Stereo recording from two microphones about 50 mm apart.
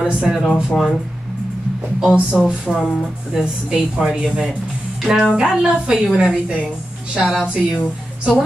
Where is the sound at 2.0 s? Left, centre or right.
Right; by 3.4 s centre.